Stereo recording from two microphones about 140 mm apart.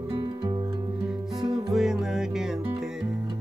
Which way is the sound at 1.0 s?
Centre (ahead or behind).